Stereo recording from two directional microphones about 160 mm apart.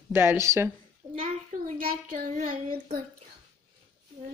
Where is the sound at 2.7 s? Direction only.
40° right (ahead or behind).